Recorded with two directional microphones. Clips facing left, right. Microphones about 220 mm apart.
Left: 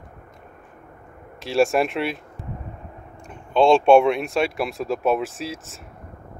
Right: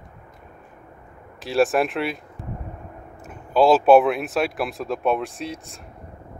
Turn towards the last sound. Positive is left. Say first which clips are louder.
# even
turn(degrees=0)  # may be behind; listen again after turning